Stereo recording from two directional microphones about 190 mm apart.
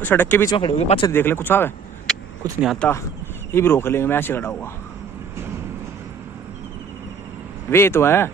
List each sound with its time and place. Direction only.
0.0 s speech: 10° left (ahead or behind)
0.6 s speech: 30° left (ahead or behind)
1.0 s speech: 10° left (ahead or behind)
2.1 s vehicle: centre (ahead or behind)
2.6 s speech: centre (ahead or behind)
3.5 s speech: 15° left (ahead or behind)
7.7 s speech: 15° left (ahead or behind)